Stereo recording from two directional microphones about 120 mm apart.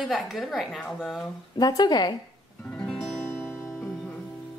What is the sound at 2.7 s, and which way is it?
Music, 5° left (ahead or behind).